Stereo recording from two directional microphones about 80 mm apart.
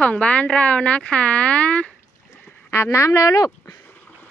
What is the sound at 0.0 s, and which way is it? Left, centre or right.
Speech, centre.